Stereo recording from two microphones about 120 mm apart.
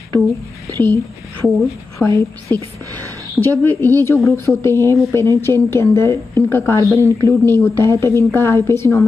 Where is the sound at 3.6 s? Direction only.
15° left (ahead or behind).